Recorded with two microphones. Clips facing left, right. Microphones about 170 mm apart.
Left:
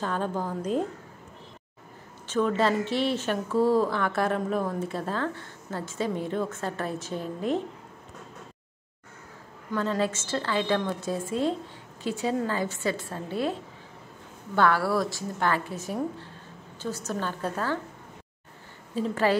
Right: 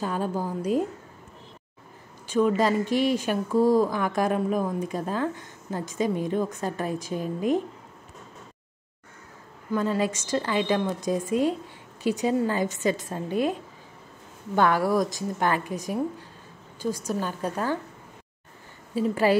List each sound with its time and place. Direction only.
0.0 s a woman's voice: 10° right (ahead or behind)
2.2 s a woman's voice: 10° right (ahead or behind)
9.7 s a woman's voice: 10° right (ahead or behind)
18.9 s a woman's voice: 10° right (ahead or behind)